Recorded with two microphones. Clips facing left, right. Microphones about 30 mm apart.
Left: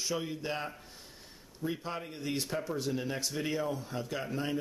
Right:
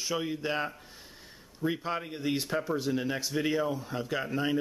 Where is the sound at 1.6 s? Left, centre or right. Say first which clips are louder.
Right 5 dB; right.